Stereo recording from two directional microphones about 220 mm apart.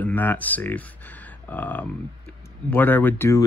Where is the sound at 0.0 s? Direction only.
10° left (ahead or behind).